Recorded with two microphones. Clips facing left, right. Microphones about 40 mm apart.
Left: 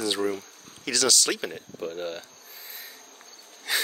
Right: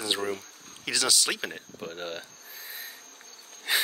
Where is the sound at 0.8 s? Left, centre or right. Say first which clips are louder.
Left 3 dB; centre.